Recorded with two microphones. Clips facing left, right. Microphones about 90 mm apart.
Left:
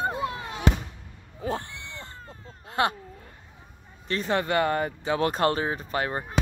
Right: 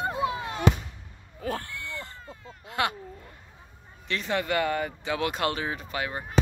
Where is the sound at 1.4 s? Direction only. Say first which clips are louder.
Left 1 dB; 25° left (ahead or behind).